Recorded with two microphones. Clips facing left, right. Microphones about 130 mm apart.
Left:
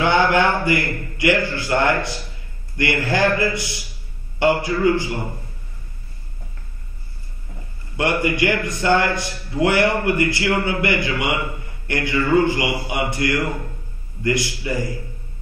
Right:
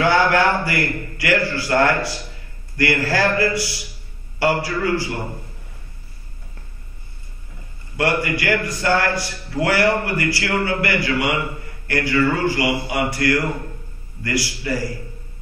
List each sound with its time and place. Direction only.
0.0 s a sound: 20° left (ahead or behind)
0.7 s a man's voice: 20° left (ahead or behind)
8.0 s a man's voice: 20° left (ahead or behind)